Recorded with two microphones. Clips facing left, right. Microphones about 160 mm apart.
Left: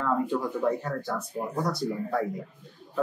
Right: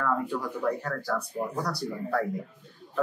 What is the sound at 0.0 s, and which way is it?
Speech, 25° left (ahead or behind).